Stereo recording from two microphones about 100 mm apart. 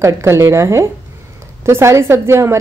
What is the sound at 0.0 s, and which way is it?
A woman's voice, 30° right (ahead or behind).